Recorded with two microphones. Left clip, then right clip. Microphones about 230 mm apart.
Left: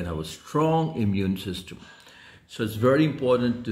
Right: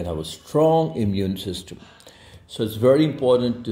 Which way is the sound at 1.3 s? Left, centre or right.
Left.